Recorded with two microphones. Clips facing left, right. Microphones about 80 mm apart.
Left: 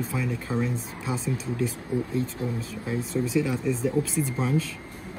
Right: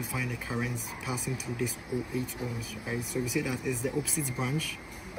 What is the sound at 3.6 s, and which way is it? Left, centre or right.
Speech, right.